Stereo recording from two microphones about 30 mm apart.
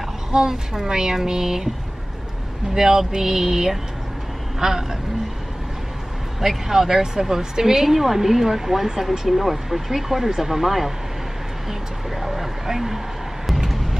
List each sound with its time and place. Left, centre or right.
0.3 s speech: centre
2.7 s speech: centre
3.1 s a sound: centre
4.6 s speech: centre
6.4 s speech: centre
12.2 s a sound: centre